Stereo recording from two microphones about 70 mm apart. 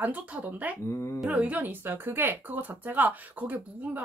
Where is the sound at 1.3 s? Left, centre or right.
Right.